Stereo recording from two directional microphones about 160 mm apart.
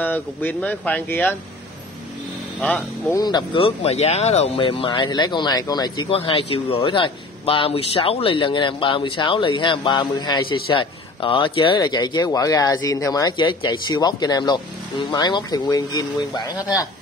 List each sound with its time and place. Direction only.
0.0 s speech: 10° left (ahead or behind)
3.1 s speech: 25° left (ahead or behind)